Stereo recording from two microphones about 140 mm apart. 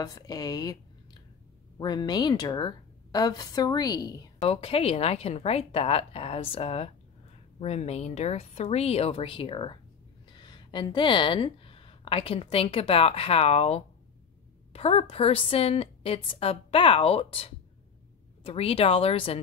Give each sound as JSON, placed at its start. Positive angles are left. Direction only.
{"t": 0.0, "sound": "a woman's voice", "side_deg": 25}
{"t": 1.8, "sound": "a woman's voice", "side_deg": 30}
{"t": 4.5, "sound": "a woman's voice", "side_deg": 45}